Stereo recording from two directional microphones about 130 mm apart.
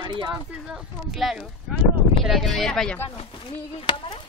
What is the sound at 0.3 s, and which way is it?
Speech, 5° right (ahead or behind).